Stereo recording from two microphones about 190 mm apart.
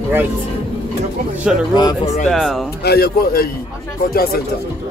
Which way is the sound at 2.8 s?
55° left (ahead or behind).